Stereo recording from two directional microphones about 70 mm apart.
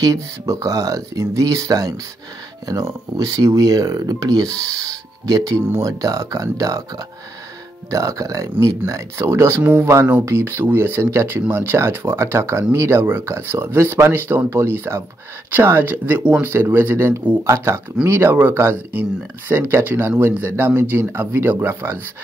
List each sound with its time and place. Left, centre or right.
0.0 s speech: right
7.9 s speech: right
9.6 s speech: right